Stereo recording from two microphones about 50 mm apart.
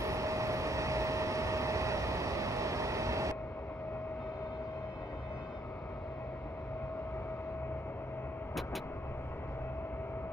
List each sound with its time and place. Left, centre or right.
0.0 s vehicle: right